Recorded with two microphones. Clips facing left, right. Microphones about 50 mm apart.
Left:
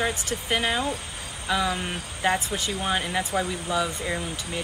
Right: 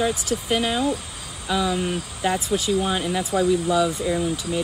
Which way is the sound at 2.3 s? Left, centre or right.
Left.